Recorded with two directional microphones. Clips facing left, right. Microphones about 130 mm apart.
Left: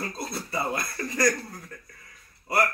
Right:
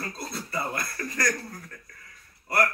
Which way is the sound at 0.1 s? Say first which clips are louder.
Left 2 dB; 15° left (ahead or behind).